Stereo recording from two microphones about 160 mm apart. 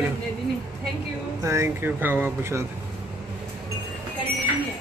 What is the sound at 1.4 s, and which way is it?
A man's voice, 20° right (ahead or behind).